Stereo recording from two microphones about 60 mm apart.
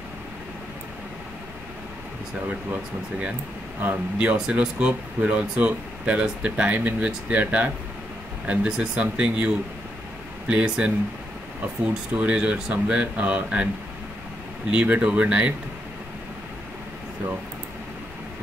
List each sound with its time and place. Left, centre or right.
3.8 s speech: right
8.6 s speech: centre
10.5 s speech: centre
14.7 s speech: right